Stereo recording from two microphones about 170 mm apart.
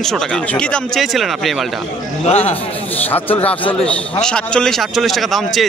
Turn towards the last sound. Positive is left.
turn(degrees=0)  # may be behind; listen again after turning